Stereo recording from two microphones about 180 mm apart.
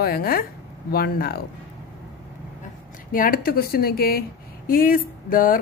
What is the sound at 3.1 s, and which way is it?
A woman's voice, 50° left (ahead or behind).